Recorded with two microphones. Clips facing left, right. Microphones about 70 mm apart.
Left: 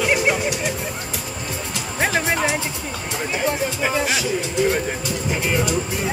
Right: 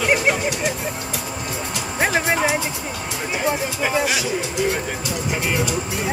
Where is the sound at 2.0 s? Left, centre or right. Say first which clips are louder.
Right 1 dB; centre.